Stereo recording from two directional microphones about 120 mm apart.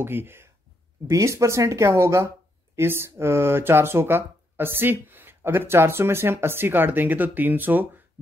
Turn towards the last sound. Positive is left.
turn(degrees=-15)  # may be behind; listen again after turning